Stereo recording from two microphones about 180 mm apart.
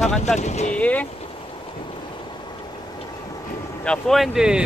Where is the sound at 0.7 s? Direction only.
10° left (ahead or behind).